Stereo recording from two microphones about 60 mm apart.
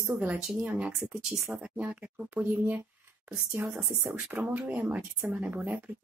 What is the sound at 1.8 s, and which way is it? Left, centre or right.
Speech, right.